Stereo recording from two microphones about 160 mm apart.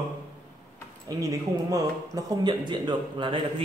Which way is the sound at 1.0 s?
20° right (ahead or behind).